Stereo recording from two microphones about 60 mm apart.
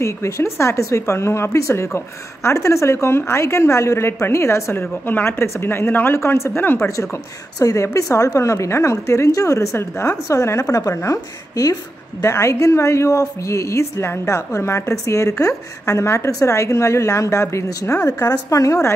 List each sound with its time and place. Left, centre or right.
0.0 s a woman's voice: left
4.7 s speech: left
6.1 s a woman's voice: left
7.5 s a woman's voice: left
10.0 s a woman's voice: left
12.2 s a woman's voice: left
18.0 s a woman's voice: left